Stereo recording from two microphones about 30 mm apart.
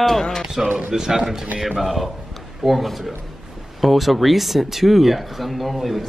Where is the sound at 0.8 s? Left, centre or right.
Centre.